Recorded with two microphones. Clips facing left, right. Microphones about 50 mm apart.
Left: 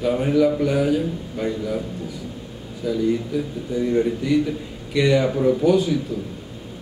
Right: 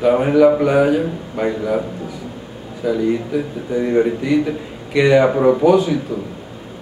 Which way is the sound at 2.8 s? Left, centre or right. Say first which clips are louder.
Right 4 dB; right.